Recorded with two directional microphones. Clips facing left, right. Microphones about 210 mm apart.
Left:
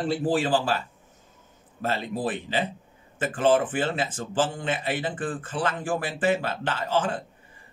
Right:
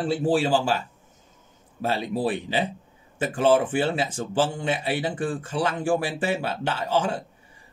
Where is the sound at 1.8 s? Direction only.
10° right (ahead or behind).